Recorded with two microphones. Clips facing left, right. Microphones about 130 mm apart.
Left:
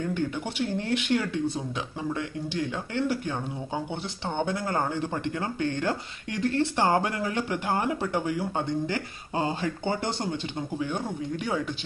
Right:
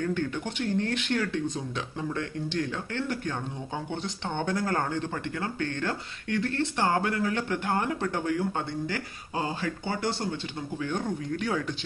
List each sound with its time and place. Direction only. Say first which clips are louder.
0.0 s speech: even; 10° left (ahead or behind)
8.8 s speech: left 3 dB; 25° left (ahead or behind)
10.8 s speech: right 2 dB; 10° left (ahead or behind)